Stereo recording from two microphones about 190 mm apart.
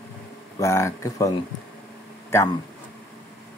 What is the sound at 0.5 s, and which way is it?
Speech, 15° left (ahead or behind).